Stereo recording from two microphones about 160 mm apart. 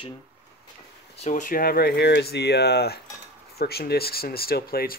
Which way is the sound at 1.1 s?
50° left (ahead or behind).